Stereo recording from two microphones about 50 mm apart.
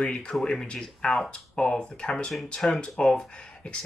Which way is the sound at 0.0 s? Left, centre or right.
Centre.